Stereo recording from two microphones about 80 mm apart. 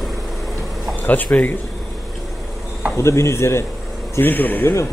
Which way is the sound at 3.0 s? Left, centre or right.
Left.